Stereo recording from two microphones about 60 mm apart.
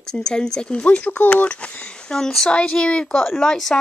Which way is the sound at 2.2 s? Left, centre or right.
Centre.